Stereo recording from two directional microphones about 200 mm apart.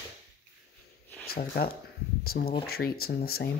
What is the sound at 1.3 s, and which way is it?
Speech, 50° left (ahead or behind).